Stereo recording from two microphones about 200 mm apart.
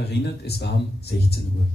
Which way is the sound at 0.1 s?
55° left (ahead or behind).